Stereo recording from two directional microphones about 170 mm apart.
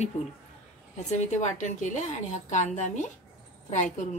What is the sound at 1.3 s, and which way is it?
A woman's voice, 45° left (ahead or behind).